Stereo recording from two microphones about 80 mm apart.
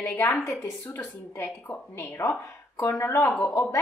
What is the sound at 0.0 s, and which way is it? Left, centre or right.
Speech, left.